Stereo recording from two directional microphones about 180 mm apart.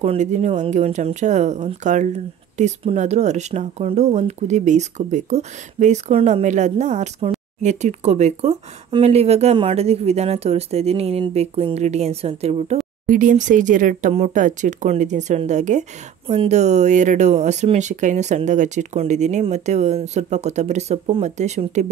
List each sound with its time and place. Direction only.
0.0 s speech: 40° right (ahead or behind)
13.0 s speech: 50° right (ahead or behind)